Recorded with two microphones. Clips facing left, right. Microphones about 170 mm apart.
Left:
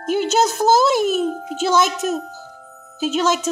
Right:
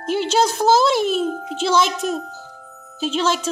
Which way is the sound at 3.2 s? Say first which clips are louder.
Left 1 dB; 45° left (ahead or behind).